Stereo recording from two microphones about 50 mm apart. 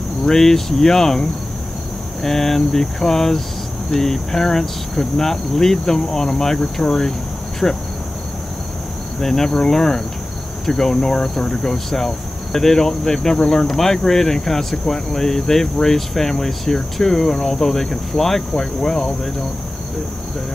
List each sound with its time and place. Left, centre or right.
0.2 s speech: centre
2.2 s speech: centre
9.2 s speech: centre